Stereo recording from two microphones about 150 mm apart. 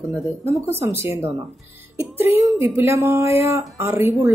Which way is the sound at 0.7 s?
15° right (ahead or behind).